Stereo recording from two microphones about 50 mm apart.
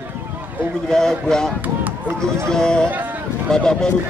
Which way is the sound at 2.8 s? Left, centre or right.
Right.